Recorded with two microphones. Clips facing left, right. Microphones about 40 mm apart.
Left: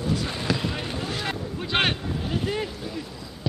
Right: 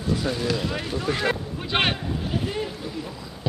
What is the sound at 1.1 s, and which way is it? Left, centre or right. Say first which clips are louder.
Speech: right 9 dB; right.